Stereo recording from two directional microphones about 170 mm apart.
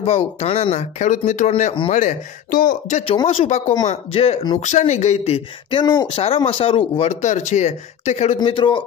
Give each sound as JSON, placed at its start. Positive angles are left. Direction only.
{"t": 0.0, "sound": "speech", "side_deg": 40}
{"t": 3.0, "sound": "speech", "side_deg": 35}
{"t": 8.4, "sound": "a man's voice", "side_deg": 30}